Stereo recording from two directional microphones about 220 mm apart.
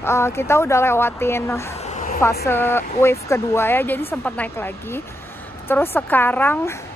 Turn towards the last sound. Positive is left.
turn(degrees=10)  # may be behind; listen again after turning